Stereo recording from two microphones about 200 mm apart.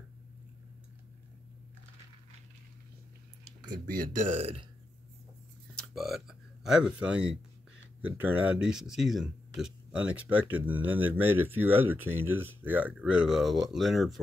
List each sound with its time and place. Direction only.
4.4 s speech: 30° right (ahead or behind)
5.9 s speech: centre (ahead or behind)